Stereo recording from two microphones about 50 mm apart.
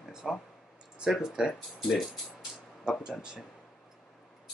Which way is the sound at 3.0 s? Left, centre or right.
Centre.